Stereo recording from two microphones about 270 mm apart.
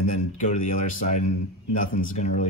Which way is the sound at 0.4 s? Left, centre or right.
Left.